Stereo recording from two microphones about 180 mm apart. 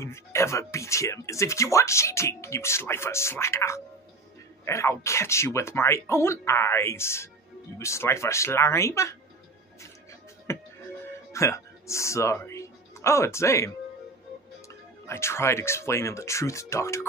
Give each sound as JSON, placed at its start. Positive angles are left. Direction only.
{"t": 0.0, "sound": "speech", "side_deg": 15}
{"t": 10.5, "sound": "music", "side_deg": 15}
{"t": 11.3, "sound": "speech", "side_deg": 15}
{"t": 15.0, "sound": "speech", "side_deg": 15}